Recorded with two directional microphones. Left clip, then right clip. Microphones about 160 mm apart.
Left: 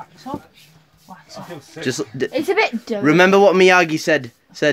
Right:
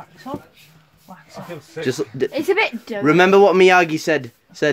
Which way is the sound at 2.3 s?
50° left (ahead or behind).